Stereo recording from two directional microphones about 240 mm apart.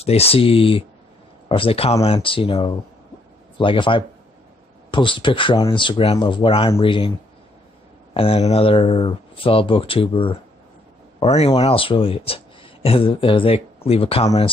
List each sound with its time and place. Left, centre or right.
0.0 s speech: left
8.1 s speech: left